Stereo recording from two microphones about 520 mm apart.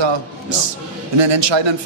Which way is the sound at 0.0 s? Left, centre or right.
Right.